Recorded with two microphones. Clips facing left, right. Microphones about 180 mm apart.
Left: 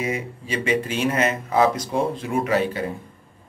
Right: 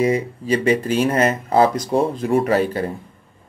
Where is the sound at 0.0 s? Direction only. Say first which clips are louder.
Right 8 dB; 40° right (ahead or behind).